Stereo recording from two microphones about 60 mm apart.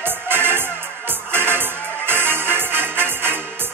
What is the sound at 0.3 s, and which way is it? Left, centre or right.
Music, right.